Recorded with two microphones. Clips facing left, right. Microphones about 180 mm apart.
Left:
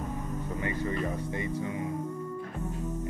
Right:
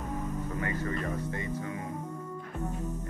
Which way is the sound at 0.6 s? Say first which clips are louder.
Left 3 dB; 20° left (ahead or behind).